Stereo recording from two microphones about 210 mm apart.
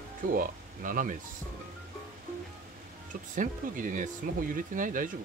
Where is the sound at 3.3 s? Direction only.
40° right (ahead or behind).